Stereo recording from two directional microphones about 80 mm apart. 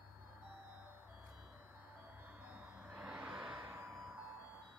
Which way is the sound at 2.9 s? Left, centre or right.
Centre.